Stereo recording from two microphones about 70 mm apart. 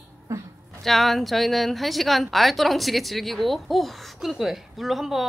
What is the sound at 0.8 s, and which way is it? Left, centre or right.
A woman's voice, centre.